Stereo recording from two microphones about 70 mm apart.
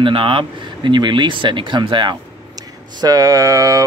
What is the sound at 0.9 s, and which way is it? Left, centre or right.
Speech, right.